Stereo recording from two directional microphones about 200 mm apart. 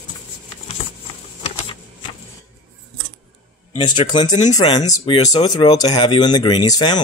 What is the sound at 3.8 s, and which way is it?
Speech, 25° left (ahead or behind).